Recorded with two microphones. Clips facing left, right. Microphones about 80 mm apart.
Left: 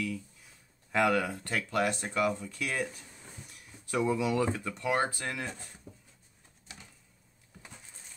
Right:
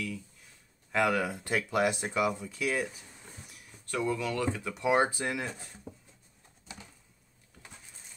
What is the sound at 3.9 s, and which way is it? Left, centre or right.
Speech, centre.